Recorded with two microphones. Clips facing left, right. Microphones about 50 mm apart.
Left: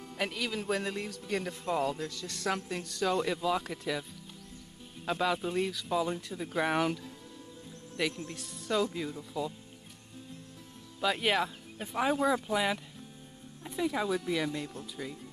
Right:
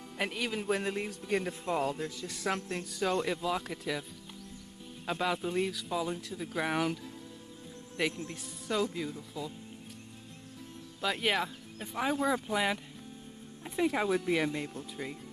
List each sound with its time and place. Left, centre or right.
0.2 s speech: centre
5.0 s speech: centre
8.0 s speech: centre
11.0 s speech: centre
13.7 s speech: right